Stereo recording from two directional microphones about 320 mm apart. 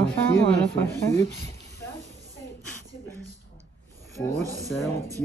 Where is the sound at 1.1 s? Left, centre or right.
Centre.